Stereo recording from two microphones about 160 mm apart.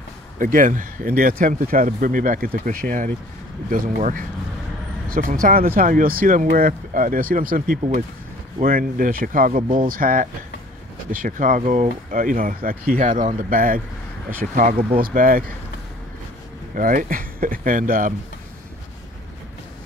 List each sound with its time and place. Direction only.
0.4 s speech: 60° right (ahead or behind)
16.7 s speech: 60° right (ahead or behind)